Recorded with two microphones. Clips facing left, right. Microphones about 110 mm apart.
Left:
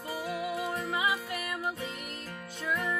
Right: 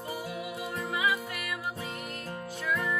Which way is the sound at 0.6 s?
30° left (ahead or behind).